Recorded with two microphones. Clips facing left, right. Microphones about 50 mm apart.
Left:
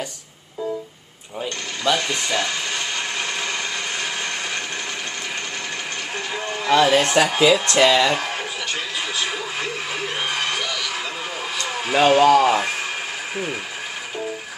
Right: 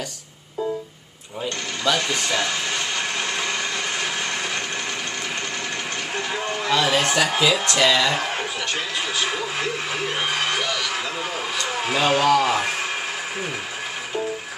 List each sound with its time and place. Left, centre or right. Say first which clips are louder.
2.2 s speech: even; centre
6.1 s livestock: right 2 dB; centre
6.7 s speech: left 5 dB; left
7.3 s speech: left 4 dB; centre
7.7 s speech: left 3 dB; left
9.2 s speech: right 1 dB; centre
11.9 s speech: left 5 dB; centre
12.2 s speech: left 4 dB; centre